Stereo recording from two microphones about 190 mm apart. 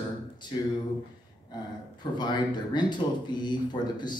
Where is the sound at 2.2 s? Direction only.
25° left (ahead or behind).